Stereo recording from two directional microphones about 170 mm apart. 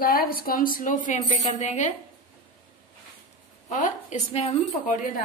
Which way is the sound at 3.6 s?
45° left (ahead or behind).